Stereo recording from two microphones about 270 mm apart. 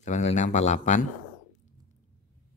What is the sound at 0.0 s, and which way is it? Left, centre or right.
Speech, left.